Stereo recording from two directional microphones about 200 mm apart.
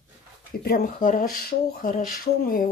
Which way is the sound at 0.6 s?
45° left (ahead or behind).